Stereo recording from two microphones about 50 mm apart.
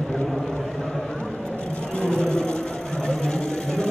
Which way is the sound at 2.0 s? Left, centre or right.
Centre.